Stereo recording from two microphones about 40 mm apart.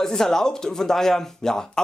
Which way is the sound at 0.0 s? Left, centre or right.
Centre.